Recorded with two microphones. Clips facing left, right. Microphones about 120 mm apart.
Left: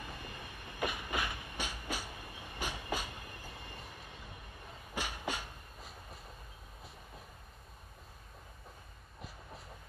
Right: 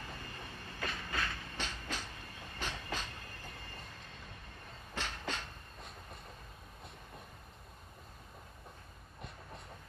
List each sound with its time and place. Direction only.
0.0 s train: 15° left (ahead or behind)